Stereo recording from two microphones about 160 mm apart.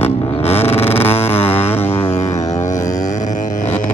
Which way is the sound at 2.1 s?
45° left (ahead or behind).